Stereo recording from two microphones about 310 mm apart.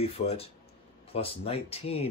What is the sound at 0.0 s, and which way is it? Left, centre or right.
Speech, centre.